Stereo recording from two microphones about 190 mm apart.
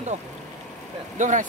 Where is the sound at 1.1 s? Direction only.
40° right (ahead or behind).